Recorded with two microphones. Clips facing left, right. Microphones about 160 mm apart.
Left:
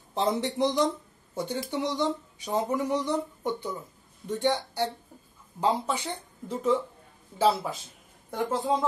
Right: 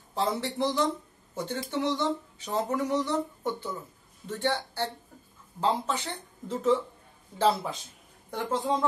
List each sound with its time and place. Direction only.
0.1 s a woman's voice: 20° left (ahead or behind); by 8.7 s 5° left (ahead or behind)